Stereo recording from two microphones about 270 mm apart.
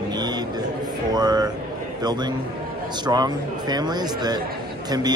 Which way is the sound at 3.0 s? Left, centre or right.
Centre.